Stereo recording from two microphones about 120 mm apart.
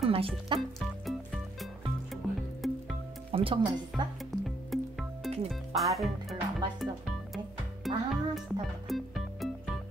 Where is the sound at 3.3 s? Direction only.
45° right (ahead or behind).